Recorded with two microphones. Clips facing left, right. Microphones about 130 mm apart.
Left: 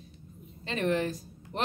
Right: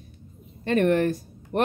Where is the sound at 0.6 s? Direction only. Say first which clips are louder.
Right 8 dB; 60° right (ahead or behind).